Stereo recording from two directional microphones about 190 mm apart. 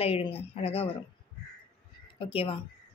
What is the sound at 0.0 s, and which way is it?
Speech, 30° left (ahead or behind).